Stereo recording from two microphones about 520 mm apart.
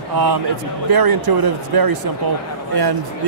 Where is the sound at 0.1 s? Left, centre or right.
Right.